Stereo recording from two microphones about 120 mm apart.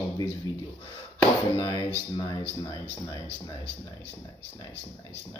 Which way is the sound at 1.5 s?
30° left (ahead or behind).